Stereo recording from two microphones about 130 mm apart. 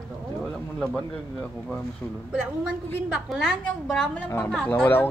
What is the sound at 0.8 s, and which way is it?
A man's voice, 10° left (ahead or behind).